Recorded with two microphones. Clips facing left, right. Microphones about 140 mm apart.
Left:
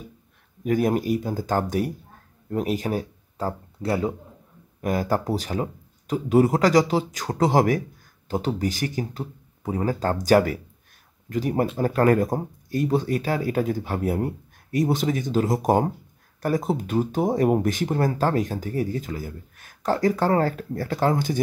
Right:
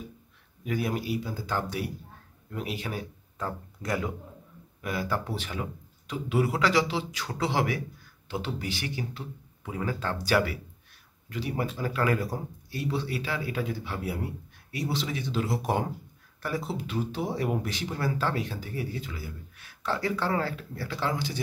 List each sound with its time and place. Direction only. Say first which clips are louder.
0.7 s speech: left 8 dB; 45° left (ahead or behind)
4.8 s speech: left 7 dB; 45° left (ahead or behind)